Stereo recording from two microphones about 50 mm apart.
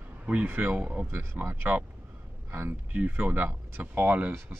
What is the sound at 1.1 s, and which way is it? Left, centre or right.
Speech, right.